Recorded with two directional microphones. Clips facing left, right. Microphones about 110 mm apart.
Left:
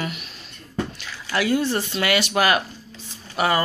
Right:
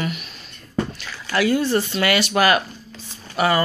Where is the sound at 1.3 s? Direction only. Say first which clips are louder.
Right 3 dB; 15° left (ahead or behind).